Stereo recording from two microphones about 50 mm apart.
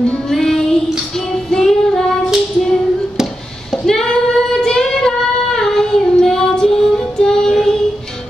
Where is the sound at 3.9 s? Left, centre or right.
Centre.